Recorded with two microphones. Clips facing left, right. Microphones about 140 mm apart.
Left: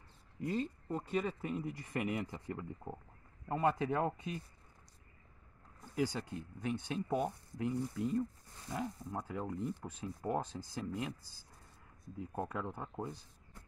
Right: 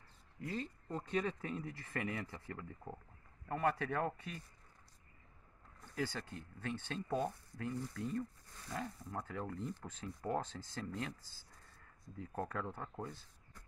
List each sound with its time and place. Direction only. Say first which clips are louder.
0.4 s speech: left 6 dB; 20° left (ahead or behind)
0.8 s speech: left 2 dB; 5° left (ahead or behind)
5.9 s speech: left 5 dB; 15° left (ahead or behind)